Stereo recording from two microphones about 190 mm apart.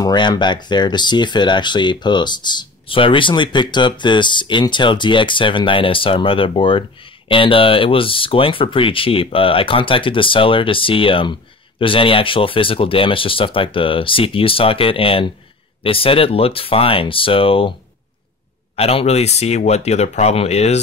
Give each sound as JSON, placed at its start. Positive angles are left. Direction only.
{"t": 0.0, "sound": "speech", "side_deg": 20}
{"t": 18.8, "sound": "speech", "side_deg": 30}